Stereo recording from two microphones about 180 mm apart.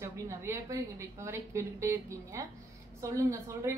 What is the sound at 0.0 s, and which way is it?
A woman's voice, 15° right (ahead or behind).